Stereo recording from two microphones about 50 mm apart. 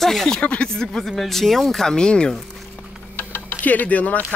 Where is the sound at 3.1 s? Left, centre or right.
Left.